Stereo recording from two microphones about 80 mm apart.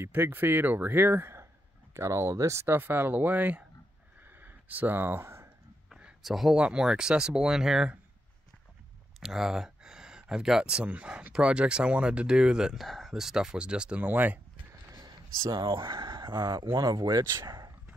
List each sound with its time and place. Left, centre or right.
0.0 s speech: right
4.2 s a sound: right
5.9 s a sound: centre
6.2 s speech: centre
9.2 s speech: centre
12.8 s speech: centre
14.0 s speech: right
15.0 s a sound: right
16.0 s speech: right
16.7 s speech: right